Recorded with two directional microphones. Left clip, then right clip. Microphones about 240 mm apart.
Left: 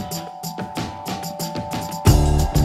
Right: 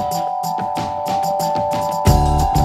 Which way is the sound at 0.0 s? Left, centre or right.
Centre.